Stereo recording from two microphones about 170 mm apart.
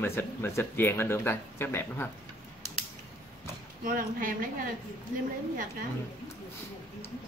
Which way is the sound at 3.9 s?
55° right (ahead or behind).